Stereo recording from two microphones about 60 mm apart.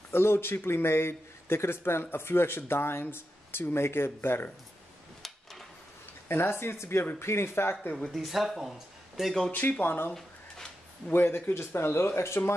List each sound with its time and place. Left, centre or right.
0.1 s speech: left
5.2 s a sound: centre
6.2 s speech: left
8.1 s speech: centre
9.5 s speech: left